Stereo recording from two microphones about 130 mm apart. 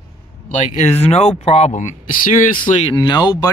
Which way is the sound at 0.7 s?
55° left (ahead or behind).